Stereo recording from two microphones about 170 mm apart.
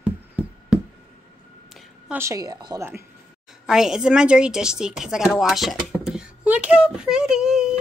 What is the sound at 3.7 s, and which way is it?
Speech, 5° right (ahead or behind).